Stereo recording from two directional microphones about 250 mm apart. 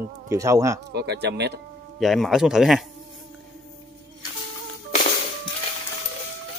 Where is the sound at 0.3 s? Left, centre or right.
Centre.